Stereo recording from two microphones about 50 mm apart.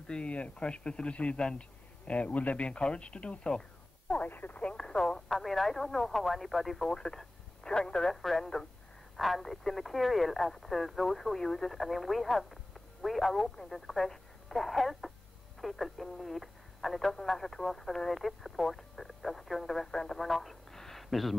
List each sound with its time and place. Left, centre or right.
0.0 s speech: left
4.2 s speech: left
4.6 s speech: left
5.3 s speech: centre
6.9 s speech: centre
8.1 s speech: centre